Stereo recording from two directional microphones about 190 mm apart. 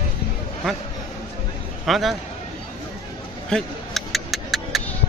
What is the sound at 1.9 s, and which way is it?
Speech, centre (ahead or behind).